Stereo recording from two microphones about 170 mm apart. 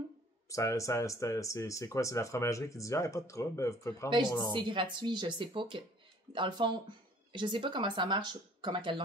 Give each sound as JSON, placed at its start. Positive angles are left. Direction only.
{"t": 0.5, "sound": "speech", "side_deg": 20}
{"t": 4.5, "sound": "speech", "side_deg": -25}